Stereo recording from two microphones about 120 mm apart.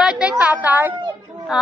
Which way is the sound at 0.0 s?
5° right (ahead or behind).